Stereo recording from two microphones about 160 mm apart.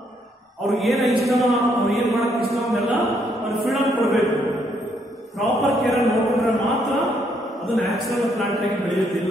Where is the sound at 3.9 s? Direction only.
20° right (ahead or behind).